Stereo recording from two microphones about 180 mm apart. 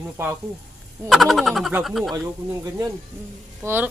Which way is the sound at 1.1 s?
Centre (ahead or behind).